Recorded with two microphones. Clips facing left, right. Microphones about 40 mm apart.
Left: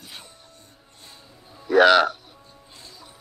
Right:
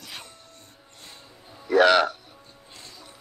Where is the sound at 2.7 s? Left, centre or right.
Right.